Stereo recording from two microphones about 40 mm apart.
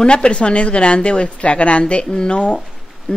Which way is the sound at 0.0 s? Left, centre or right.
Left.